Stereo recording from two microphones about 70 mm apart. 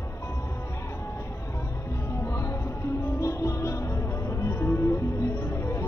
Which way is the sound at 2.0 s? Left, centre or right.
Left.